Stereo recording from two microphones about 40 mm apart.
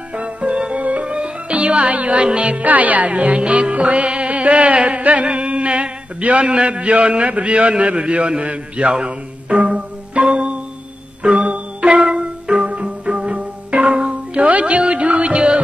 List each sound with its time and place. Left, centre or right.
0.1 s music: right
2.2 s a man's voice: right
2.6 s a man's voice: right
3.1 s a man's voice: right
3.7 s music: right
6.4 s a man's voice: right
8.9 s music: right